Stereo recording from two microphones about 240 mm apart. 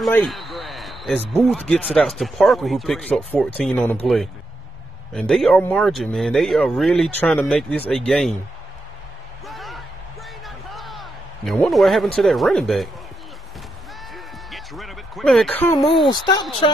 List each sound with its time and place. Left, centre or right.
0.0 s speech: centre
9.5 s a sound: centre
14.1 s basketball bounce: centre
16.1 s speech: centre